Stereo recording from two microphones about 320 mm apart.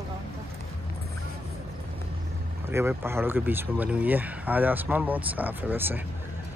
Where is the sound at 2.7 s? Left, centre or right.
Centre.